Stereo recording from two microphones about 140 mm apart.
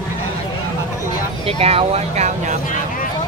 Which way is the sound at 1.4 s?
45° right (ahead or behind).